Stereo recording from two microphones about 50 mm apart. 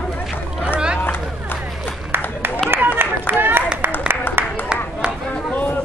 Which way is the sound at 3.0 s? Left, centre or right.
Right.